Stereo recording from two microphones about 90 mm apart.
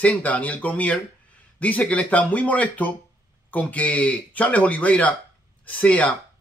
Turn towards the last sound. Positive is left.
turn(degrees=15)  # may be behind; listen again after turning